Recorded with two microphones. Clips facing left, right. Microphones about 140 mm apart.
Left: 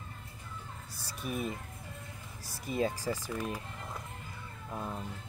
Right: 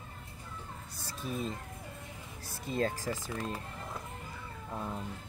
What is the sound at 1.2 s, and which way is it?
Speech, 15° left (ahead or behind).